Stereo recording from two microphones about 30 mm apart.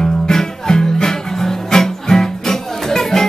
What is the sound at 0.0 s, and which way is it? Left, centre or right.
Music, left.